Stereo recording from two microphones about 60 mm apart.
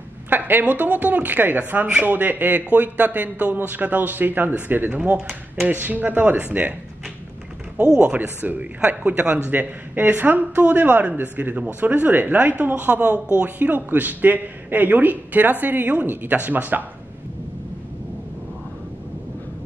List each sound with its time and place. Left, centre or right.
0.3 s a man's voice: right
7.7 s a man's voice: centre